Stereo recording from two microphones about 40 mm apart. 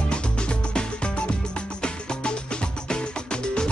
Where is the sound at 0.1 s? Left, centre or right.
Left.